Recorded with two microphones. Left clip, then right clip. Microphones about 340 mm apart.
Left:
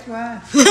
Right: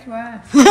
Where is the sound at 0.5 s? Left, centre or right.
Centre.